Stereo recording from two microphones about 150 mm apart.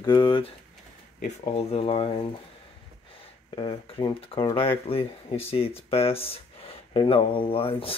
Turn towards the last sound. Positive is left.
turn(degrees=40)  # may be behind; listen again after turning